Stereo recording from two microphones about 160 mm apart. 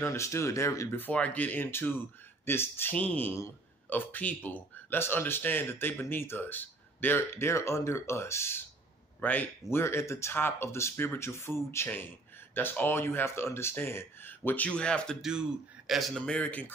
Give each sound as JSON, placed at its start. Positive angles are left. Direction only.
{"t": 0.0, "sound": "speech", "side_deg": 15}